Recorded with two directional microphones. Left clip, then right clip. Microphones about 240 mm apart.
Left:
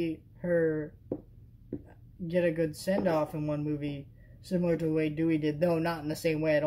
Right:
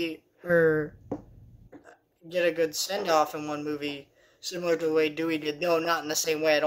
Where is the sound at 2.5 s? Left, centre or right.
Centre.